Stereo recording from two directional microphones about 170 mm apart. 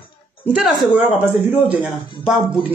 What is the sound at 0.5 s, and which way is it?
A man's voice, 5° right (ahead or behind).